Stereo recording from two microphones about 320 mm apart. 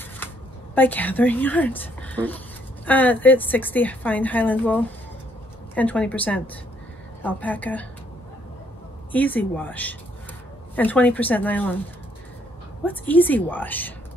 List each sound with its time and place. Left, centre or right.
0.7 s a woman's voice: centre
9.1 s a woman's voice: centre
12.8 s a woman's voice: centre